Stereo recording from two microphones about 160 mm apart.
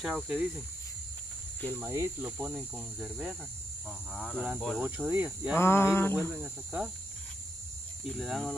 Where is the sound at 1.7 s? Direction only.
15° right (ahead or behind); by 4.8 s centre (ahead or behind).